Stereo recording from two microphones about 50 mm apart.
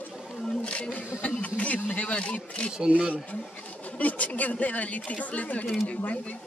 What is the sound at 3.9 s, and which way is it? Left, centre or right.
Speech, left.